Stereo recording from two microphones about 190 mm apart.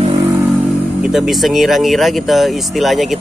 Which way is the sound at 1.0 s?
Centre (ahead or behind).